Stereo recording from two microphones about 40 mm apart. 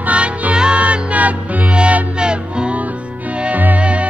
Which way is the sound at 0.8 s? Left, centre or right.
Right.